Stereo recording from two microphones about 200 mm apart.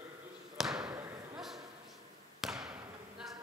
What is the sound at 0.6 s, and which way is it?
Basketball bounce, centre (ahead or behind).